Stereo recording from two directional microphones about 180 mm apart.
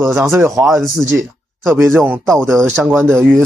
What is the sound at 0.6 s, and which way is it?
Speech, centre (ahead or behind).